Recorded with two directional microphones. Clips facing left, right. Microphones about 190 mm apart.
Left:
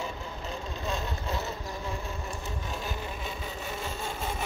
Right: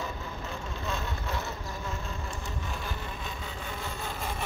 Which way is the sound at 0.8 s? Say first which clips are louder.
Left 2 dB; 15° left (ahead or behind).